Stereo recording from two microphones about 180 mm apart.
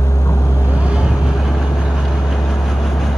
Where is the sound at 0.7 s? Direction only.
5° right (ahead or behind).